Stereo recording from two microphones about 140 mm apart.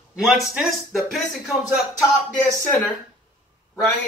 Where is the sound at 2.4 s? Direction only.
15° left (ahead or behind).